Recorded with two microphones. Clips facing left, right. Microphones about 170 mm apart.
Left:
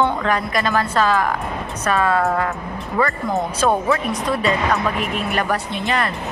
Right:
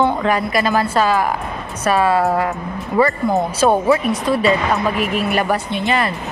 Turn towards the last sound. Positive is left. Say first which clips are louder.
# right 3 dB
turn(degrees=-5)  # may be behind; listen again after turning